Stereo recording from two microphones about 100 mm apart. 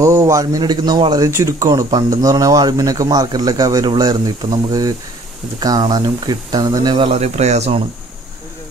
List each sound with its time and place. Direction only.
0.0 s speech: 30° right (ahead or behind)
1.3 s speech: 35° right (ahead or behind)
7.2 s speech: 90° right